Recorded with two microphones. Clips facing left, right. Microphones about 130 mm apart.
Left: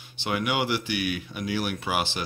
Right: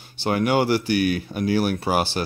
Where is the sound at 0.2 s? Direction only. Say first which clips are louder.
Right 7 dB; 40° right (ahead or behind).